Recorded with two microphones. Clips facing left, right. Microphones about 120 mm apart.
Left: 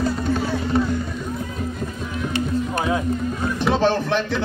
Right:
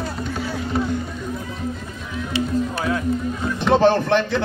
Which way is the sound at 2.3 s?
50° left (ahead or behind).